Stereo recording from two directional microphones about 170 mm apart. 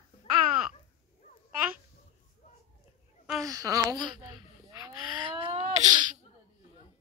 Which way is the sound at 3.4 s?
20° right (ahead or behind).